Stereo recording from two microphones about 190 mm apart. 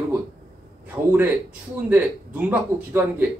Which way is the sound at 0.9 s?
10° right (ahead or behind).